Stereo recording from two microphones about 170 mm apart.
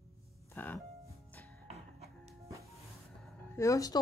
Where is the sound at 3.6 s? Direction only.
20° left (ahead or behind).